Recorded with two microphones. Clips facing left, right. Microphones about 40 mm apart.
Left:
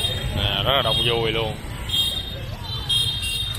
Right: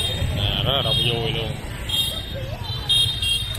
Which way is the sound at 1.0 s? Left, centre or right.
Centre.